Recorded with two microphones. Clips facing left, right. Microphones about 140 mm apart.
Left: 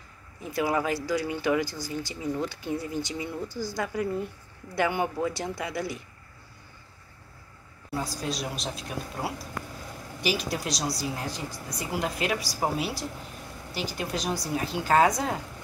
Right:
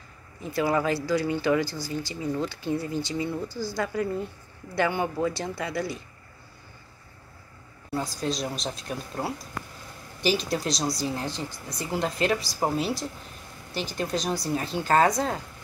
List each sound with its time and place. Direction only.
0.4 s speech: 10° left (ahead or behind)
8.2 s speech: 10° left (ahead or behind)